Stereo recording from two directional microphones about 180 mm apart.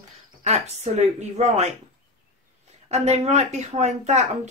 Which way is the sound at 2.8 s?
35° right (ahead or behind).